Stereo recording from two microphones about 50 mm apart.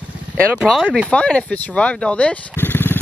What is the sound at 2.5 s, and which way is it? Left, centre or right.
Vehicle, left.